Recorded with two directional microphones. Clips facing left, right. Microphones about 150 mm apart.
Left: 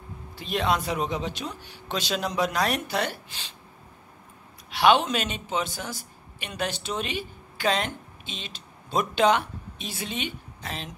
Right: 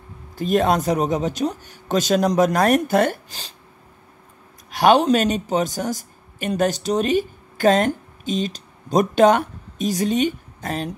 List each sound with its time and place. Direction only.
0.4 s speech: 45° right (ahead or behind)
4.6 s speech: 45° right (ahead or behind)